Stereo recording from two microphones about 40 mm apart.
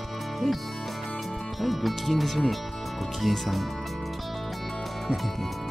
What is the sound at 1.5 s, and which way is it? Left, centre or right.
Speech, centre.